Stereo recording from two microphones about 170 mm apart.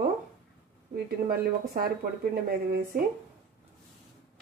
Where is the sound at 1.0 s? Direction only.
60° right (ahead or behind).